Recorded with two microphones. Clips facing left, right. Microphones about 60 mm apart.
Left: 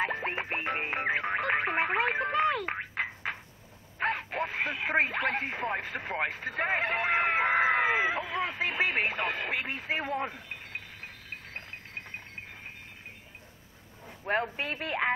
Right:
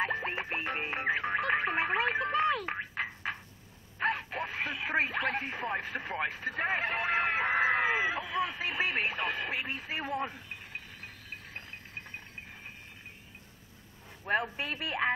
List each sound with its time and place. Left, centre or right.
0.0 s music: left
4.0 s radio: left
10.5 s a sound: left
14.3 s speech: left